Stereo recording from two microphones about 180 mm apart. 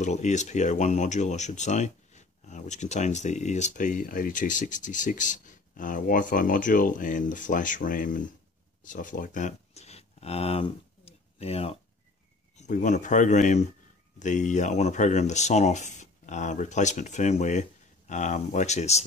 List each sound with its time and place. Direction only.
0.0 s speech: 40° left (ahead or behind)
8.8 s a sound: 45° left (ahead or behind)
12.5 s speech: 40° left (ahead or behind)